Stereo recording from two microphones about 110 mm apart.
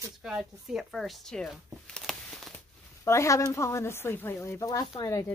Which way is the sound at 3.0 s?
25° left (ahead or behind).